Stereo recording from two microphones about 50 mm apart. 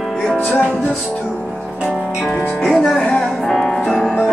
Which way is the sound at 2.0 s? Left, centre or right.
Centre.